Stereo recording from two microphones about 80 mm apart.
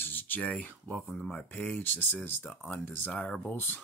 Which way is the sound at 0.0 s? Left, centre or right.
Left.